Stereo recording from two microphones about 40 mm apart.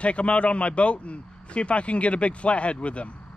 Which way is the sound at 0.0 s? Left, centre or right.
Left.